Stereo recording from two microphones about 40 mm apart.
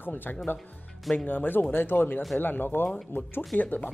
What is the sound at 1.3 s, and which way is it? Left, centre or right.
Speech, left.